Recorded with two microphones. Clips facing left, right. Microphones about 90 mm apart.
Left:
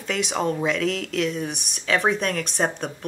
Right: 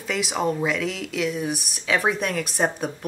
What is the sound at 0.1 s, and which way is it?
Speech, 5° right (ahead or behind).